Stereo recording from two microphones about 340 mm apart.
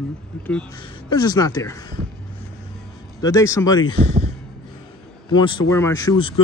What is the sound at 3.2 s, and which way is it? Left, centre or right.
Speech, centre.